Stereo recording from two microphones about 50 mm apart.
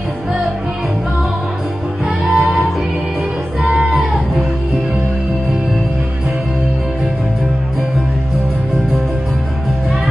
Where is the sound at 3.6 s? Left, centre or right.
Centre.